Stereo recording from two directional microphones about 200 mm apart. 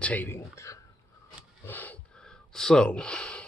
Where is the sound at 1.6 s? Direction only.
10° left (ahead or behind).